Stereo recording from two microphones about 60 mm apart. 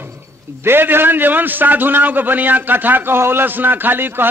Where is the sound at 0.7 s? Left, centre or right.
Right.